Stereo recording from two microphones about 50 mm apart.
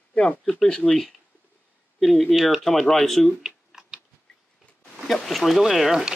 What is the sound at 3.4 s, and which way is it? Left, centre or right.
Computer keyboard, centre.